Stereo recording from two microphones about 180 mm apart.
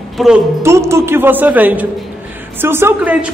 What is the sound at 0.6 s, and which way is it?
A man's voice, 15° right (ahead or behind).